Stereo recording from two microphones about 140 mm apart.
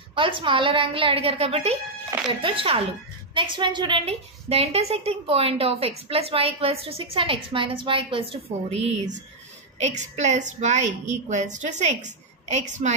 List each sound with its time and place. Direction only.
0.1 s a woman's voice: 40° right (ahead or behind)
4.0 s a woman's voice: 45° right (ahead or behind)